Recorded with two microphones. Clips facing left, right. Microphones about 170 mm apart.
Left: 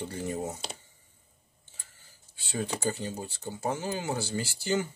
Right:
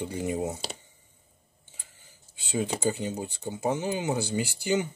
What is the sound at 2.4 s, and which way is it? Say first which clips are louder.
Speech: right 4 dB; 15° right (ahead or behind).